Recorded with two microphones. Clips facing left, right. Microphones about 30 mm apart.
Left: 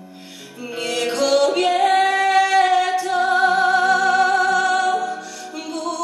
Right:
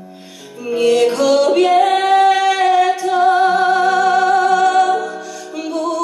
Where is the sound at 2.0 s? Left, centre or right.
Centre.